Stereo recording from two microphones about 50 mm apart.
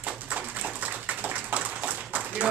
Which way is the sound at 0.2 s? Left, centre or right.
Right.